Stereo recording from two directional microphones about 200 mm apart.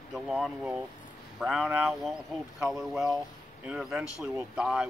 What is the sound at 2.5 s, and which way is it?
Speech, 15° right (ahead or behind).